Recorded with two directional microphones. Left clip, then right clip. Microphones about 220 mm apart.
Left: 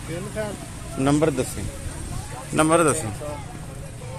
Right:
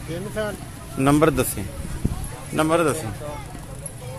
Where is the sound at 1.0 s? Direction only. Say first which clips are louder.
Right 3 dB; 20° right (ahead or behind).